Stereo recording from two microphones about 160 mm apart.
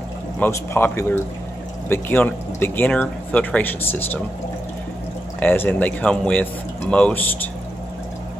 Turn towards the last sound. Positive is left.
turn(degrees=10)  # may be behind; listen again after turning